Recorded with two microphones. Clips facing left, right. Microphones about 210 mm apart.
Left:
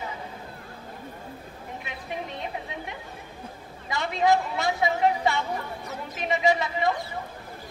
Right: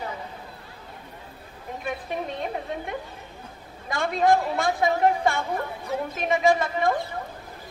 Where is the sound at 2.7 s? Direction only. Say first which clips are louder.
Right 5 dB; 50° right (ahead or behind).